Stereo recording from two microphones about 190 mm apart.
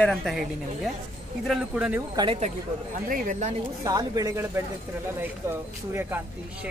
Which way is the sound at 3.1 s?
45° right (ahead or behind).